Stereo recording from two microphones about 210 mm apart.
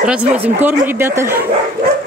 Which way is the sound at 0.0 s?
5° right (ahead or behind).